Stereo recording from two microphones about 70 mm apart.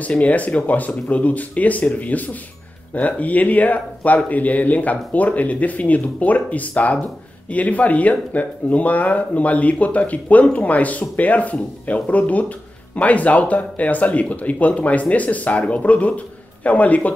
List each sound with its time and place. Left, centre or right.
0.0 s speech: left